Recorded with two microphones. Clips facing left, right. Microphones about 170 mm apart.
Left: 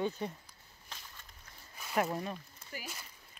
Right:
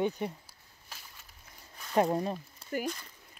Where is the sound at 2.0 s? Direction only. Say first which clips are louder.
Right 6 dB; 30° right (ahead or behind).